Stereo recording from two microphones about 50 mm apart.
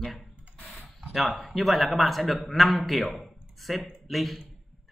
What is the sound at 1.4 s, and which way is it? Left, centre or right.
Speech, centre.